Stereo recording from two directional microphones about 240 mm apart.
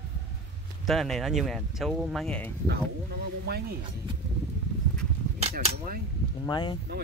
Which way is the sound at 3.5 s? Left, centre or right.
Right.